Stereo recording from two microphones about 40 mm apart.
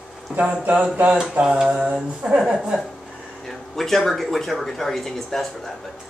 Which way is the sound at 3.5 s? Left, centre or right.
Centre.